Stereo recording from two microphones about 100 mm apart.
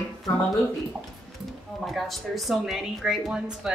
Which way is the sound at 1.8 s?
Centre (ahead or behind).